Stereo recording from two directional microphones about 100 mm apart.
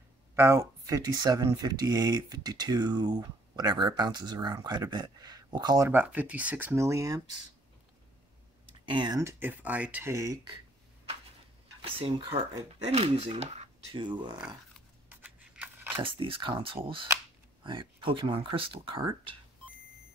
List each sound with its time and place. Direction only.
0.4 s speech: 30° right (ahead or behind); by 5.8 s 45° right (ahead or behind)
5.8 s speech: 20° right (ahead or behind)
8.8 s speech: 50° right (ahead or behind)
9.2 s speech: 20° right (ahead or behind)
10.1 s speech: 35° right (ahead or behind)
11.8 s speech: 65° right (ahead or behind); by 13.7 s 90° right
13.9 s speech: 50° right (ahead or behind)
15.0 s a sound: 15° right (ahead or behind)
16.0 s speech: 60° right (ahead or behind)